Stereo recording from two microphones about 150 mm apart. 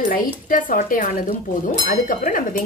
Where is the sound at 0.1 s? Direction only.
65° left (ahead or behind).